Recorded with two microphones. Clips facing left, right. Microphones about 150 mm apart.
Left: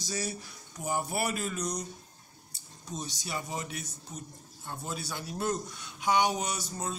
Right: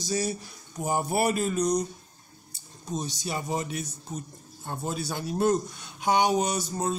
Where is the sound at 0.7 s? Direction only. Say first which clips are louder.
Right 6 dB; 35° right (ahead or behind).